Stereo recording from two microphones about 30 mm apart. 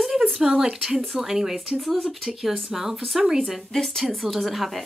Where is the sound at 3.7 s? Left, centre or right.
Centre.